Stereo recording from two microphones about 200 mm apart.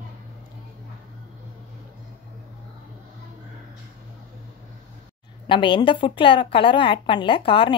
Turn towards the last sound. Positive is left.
turn(degrees=25)  # may be behind; listen again after turning